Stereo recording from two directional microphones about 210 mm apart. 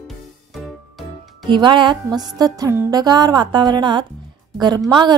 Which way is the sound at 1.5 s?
20° right (ahead or behind).